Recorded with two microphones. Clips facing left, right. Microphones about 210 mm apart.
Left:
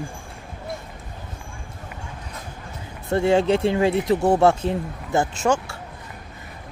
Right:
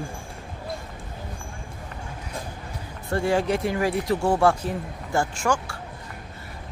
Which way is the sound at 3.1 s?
25° left (ahead or behind).